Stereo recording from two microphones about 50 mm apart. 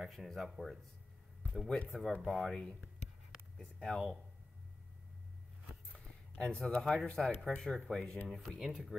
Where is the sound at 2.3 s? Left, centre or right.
Centre.